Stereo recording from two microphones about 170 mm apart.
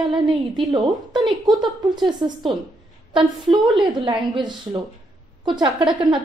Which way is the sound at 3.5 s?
Centre (ahead or behind).